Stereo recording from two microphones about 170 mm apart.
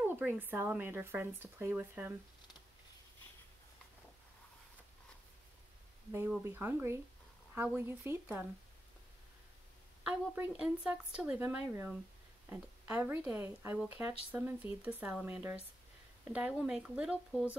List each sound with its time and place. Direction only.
0.0 s speech: 10° right (ahead or behind)
6.4 s speech: 15° right (ahead or behind)
10.3 s speech: 10° right (ahead or behind)